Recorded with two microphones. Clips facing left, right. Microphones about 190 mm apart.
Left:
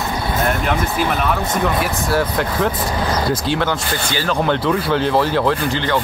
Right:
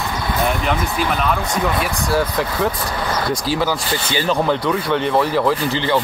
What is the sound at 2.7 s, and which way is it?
Speech, 20° left (ahead or behind).